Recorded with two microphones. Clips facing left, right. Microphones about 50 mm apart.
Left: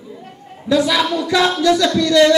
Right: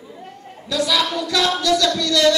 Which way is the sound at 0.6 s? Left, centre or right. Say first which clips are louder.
Left 5 dB; left.